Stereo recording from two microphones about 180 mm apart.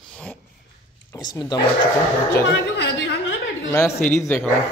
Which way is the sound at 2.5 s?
80° left.